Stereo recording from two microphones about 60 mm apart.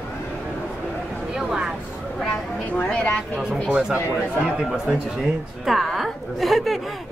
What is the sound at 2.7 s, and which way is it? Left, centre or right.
Speech, left.